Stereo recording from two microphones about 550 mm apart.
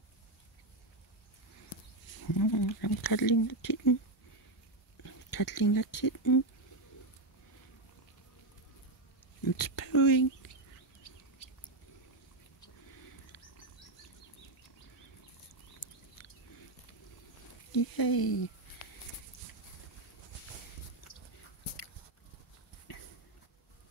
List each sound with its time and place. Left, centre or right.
2.2 s speech: left
5.0 s speech: left
9.4 s speech: left
15.8 s a sound: left
17.7 s speech: left